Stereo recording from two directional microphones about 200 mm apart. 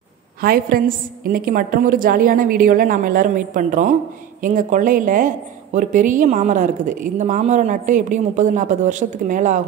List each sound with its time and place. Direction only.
0.4 s a woman's voice: 45° right (ahead or behind)